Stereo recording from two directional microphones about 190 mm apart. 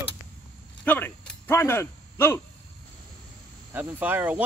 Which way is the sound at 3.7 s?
10° right (ahead or behind).